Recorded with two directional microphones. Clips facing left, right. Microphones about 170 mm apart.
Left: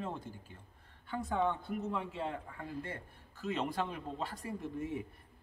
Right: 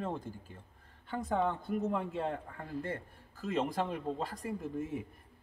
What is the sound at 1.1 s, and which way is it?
A man's voice, 45° right (ahead or behind).